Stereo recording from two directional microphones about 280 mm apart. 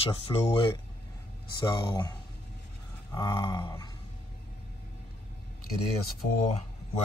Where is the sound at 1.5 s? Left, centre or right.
Centre.